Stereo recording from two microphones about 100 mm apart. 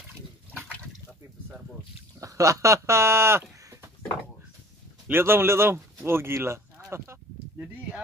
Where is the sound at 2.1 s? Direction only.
35° right (ahead or behind).